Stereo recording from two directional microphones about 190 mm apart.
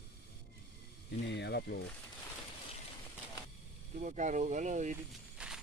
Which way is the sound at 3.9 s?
40° right (ahead or behind).